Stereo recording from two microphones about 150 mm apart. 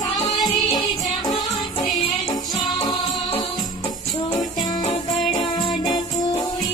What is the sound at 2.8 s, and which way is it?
Music, 30° left (ahead or behind).